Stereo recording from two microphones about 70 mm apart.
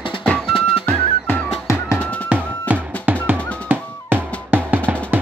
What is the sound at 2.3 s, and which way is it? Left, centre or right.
Music, centre.